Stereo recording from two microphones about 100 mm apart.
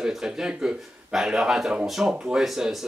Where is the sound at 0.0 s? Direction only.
5° right (ahead or behind).